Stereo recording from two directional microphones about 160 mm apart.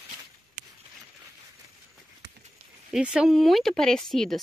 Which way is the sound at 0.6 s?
60° right (ahead or behind).